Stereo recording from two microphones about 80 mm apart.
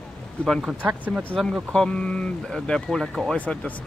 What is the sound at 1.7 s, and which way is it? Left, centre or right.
Speech, centre.